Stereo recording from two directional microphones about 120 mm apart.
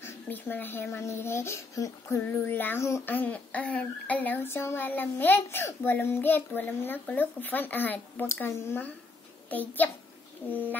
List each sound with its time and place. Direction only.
0.0 s speech: 15° left (ahead or behind)